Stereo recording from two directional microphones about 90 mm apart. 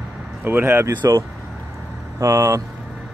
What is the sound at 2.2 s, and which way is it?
Speech, 35° right (ahead or behind).